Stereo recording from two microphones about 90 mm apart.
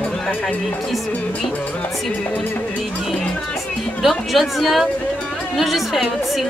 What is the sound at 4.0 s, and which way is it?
A woman's voice, centre (ahead or behind).